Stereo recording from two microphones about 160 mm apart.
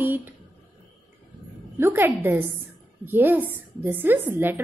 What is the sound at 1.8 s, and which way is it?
A woman's voice, 15° right (ahead or behind).